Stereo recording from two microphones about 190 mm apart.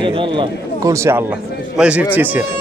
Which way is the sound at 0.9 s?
15° right (ahead or behind).